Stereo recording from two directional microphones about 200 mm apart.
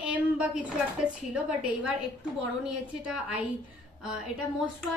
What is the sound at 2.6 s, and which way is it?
Speech, 5° right (ahead or behind).